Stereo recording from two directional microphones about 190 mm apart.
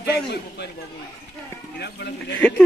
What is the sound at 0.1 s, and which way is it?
Speech, 60° left (ahead or behind).